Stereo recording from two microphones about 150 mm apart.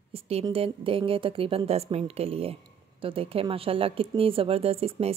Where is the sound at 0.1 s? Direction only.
40° right (ahead or behind).